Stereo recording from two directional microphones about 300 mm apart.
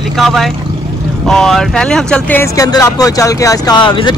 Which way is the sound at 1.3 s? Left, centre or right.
Centre.